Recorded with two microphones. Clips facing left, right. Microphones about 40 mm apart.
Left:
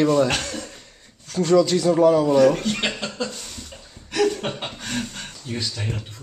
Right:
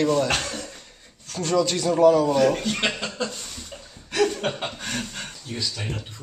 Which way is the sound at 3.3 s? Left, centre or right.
Centre.